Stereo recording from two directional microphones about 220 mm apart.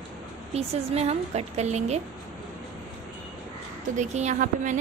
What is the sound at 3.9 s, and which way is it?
Speech, 30° right (ahead or behind).